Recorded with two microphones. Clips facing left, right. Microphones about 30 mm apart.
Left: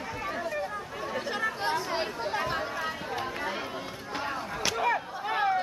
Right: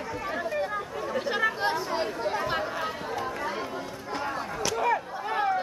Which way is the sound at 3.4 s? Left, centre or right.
Left.